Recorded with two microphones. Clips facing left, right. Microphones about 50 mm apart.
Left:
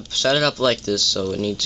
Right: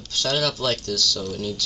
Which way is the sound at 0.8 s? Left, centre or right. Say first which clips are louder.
Left 4 dB; centre.